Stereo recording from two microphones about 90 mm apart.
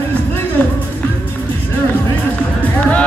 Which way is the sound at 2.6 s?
15° left (ahead or behind).